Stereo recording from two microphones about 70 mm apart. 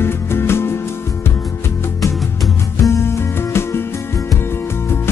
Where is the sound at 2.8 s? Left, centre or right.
Left.